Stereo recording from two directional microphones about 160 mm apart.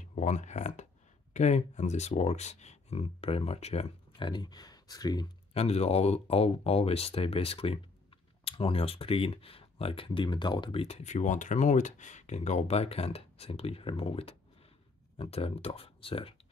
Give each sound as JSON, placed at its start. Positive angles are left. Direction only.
{"t": 0.1, "sound": "speech", "side_deg": 50}
{"t": 4.3, "sound": "speech", "side_deg": 25}
{"t": 5.5, "sound": "speech", "side_deg": 40}